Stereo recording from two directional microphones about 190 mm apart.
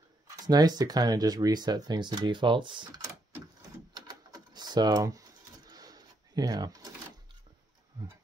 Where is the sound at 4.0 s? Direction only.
20° right (ahead or behind).